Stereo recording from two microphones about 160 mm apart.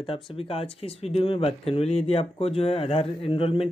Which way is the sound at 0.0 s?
35° left (ahead or behind).